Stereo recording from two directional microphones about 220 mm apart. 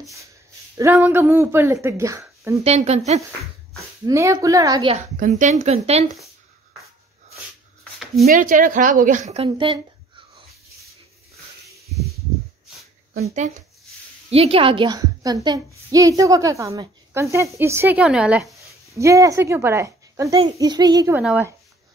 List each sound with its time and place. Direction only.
0.7 s a woman's voice: 10° right (ahead or behind)
2.6 s speech: 30° right (ahead or behind)
4.0 s a woman's voice: 15° right (ahead or behind)
4.9 s a woman's voice: 30° right (ahead or behind)
8.3 s a woman's voice: 40° right (ahead or behind)
11.9 s snake: centre (ahead or behind)
13.1 s a woman's voice: 30° right (ahead or behind); by 21.2 s 15° right (ahead or behind)
21.2 s speech: 5° right (ahead or behind)